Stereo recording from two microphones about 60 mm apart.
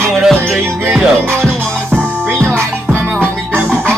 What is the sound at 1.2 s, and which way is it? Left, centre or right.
Music, right.